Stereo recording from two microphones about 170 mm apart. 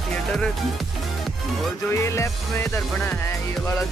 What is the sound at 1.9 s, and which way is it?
Music, 15° left (ahead or behind).